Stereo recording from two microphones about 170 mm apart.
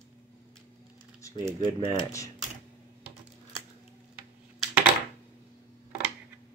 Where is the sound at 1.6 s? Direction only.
25° left (ahead or behind).